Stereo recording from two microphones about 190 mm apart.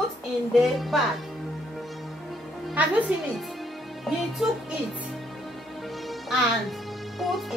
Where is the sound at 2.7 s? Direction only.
5° right (ahead or behind).